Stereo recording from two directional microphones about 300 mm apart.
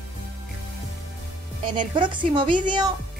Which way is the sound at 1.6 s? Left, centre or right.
Centre.